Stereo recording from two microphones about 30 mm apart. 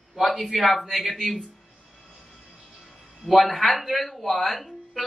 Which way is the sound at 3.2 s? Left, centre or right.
Centre.